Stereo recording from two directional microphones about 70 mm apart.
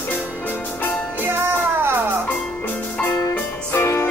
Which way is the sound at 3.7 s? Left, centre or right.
Left.